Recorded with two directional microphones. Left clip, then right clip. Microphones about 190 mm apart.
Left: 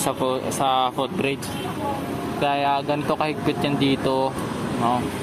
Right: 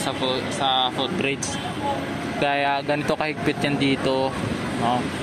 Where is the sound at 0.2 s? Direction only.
25° left (ahead or behind).